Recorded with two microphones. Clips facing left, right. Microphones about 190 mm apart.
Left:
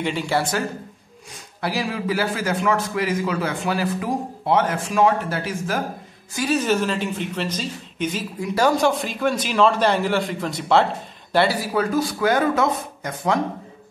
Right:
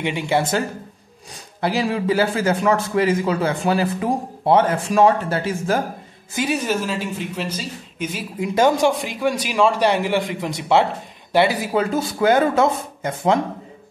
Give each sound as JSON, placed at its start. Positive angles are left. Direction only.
{"t": 0.0, "sound": "a man's voice", "side_deg": -15}
{"t": 1.6, "sound": "a man's voice", "side_deg": -25}
{"t": 6.3, "sound": "a man's voice", "side_deg": -15}
{"t": 8.4, "sound": "a man's voice", "side_deg": -20}